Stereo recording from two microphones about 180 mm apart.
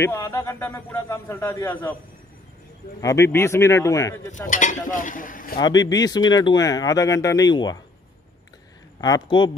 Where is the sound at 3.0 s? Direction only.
15° left (ahead or behind).